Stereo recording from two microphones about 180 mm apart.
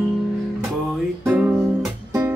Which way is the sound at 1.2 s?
10° right (ahead or behind).